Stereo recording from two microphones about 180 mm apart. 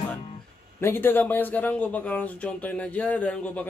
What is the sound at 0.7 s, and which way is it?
Speech, 10° left (ahead or behind).